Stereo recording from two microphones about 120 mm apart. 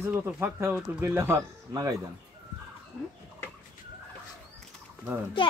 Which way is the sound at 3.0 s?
5° right (ahead or behind).